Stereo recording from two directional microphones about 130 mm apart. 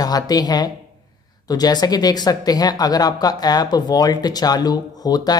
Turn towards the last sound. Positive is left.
turn(degrees=30)  # may be behind; listen again after turning